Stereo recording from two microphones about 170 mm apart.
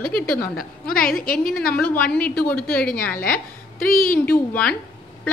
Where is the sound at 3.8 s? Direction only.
55° left (ahead or behind).